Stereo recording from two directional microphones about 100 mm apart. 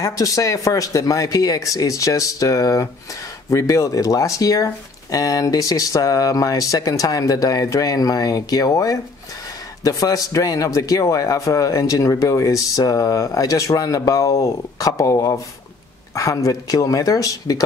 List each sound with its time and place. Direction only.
0.0 s a man's voice: 35° left (ahead or behind)